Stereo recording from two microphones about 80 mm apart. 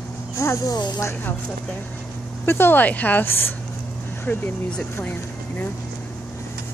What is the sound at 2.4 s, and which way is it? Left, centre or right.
Speech, left.